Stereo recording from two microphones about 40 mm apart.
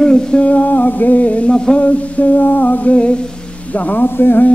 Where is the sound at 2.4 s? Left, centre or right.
Left.